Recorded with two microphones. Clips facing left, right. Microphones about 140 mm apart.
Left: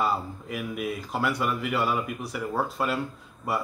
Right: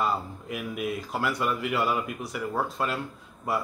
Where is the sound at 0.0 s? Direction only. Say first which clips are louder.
Left 1 dB; centre (ahead or behind).